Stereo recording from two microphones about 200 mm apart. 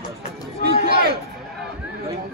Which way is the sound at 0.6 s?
55° right (ahead or behind).